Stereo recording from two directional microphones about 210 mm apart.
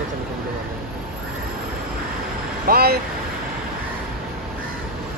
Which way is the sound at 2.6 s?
45° right (ahead or behind).